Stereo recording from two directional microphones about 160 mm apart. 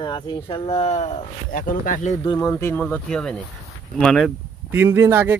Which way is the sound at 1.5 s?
60° left (ahead or behind).